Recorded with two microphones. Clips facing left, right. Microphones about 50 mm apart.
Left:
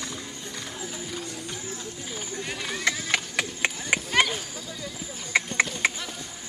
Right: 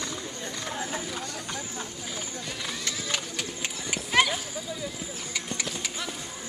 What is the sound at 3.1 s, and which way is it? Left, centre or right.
Run, left.